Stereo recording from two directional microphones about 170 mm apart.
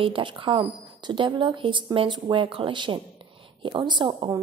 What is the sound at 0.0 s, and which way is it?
Speech, 30° right (ahead or behind).